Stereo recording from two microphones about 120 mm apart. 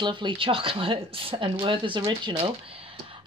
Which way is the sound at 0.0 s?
40° right (ahead or behind).